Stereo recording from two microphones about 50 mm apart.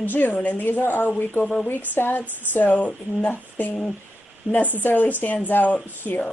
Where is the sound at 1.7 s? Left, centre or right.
Left.